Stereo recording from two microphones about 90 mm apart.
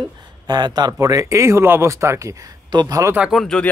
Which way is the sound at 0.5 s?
55° right (ahead or behind).